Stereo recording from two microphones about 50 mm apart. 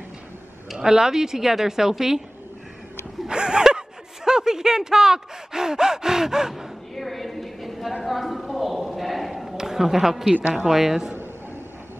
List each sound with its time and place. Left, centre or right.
0.7 s speech: centre
3.3 s speech: centre
7.0 s a sound: centre
9.6 s a man's voice: centre